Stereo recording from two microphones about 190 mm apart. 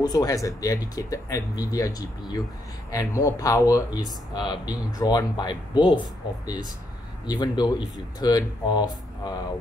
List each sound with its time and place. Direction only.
0.0 s speech: 20° left (ahead or behind)
7.2 s speech: 20° left (ahead or behind)